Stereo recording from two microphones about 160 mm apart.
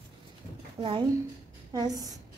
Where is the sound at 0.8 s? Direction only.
30° right (ahead or behind).